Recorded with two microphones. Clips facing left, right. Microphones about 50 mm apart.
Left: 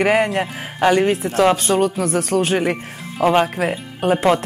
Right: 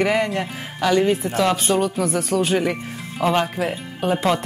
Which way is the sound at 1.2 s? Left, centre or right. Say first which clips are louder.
Left 4 dB; left.